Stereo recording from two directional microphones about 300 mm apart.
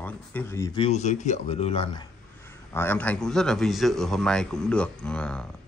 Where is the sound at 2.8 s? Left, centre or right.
Centre.